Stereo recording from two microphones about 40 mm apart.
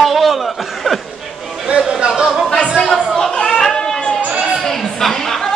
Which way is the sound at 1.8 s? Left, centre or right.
Centre.